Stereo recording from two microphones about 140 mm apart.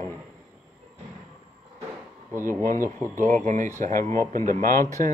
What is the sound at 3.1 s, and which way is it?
Speech, 65° right (ahead or behind).